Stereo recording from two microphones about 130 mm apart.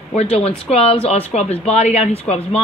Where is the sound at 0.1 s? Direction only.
55° left (ahead or behind).